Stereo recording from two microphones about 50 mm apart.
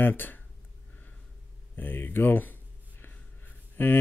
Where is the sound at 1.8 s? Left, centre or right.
Left.